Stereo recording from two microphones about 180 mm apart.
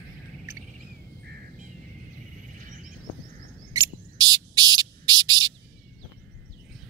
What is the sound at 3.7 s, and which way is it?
Bird, 25° right (ahead or behind).